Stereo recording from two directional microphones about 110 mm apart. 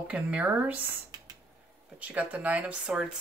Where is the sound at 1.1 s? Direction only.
40° right (ahead or behind).